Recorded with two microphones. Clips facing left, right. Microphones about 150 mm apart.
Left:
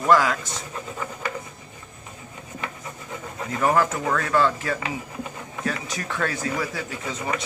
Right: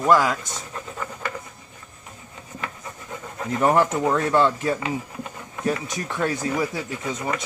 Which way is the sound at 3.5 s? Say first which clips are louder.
Right 2 dB; 25° right (ahead or behind).